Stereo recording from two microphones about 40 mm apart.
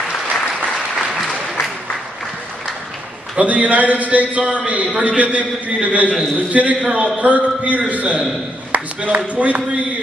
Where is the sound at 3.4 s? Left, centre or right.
Right.